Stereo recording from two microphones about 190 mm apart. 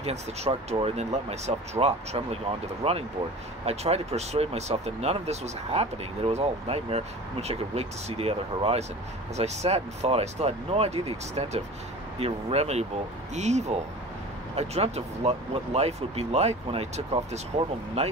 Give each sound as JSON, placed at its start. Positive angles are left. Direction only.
{"t": 0.0, "sound": "speech", "side_deg": -35}